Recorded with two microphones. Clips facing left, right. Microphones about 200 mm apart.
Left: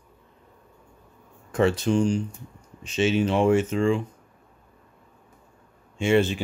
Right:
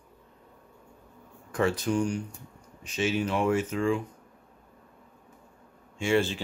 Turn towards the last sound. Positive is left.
turn(degrees=20)  # may be behind; listen again after turning